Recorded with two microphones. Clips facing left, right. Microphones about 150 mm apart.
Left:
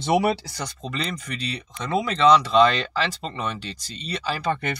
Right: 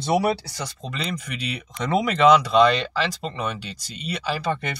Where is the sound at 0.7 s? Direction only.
5° right (ahead or behind).